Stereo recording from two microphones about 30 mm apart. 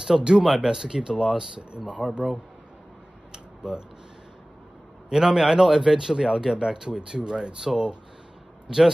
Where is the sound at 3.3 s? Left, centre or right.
Right.